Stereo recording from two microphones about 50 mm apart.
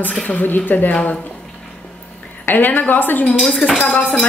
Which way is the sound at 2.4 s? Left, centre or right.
Left.